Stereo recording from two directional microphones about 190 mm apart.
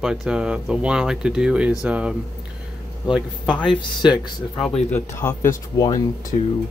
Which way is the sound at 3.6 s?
25° left (ahead or behind).